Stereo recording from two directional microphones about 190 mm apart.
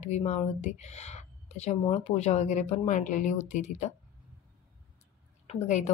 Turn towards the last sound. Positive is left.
turn(degrees=40)  # may be behind; listen again after turning